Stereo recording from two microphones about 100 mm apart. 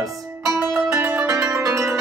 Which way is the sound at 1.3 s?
35° right (ahead or behind).